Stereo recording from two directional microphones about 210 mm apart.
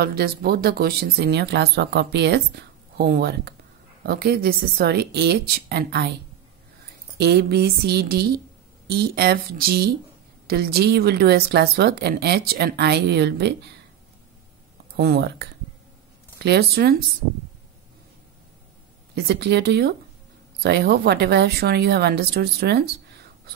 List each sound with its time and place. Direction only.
0.0 s speech: 45° right (ahead or behind)
7.2 s speech: 50° right (ahead or behind)
15.0 s speech: 50° right (ahead or behind)
16.4 s speech: 50° right (ahead or behind)
19.1 s speech: 50° right (ahead or behind)